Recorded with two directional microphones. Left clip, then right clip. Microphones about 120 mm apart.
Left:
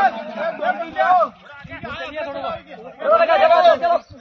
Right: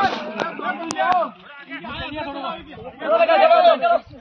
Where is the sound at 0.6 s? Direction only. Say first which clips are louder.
Left 5 dB; 30° left (ahead or behind).